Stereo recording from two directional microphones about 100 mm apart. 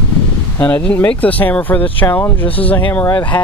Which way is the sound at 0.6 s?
15° left (ahead or behind).